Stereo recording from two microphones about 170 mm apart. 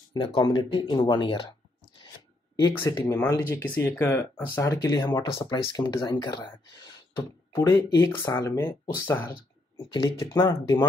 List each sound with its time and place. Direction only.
0.1 s speech: 25° left (ahead or behind)
2.7 s speech: 15° left (ahead or behind)
9.9 s speech: 20° left (ahead or behind)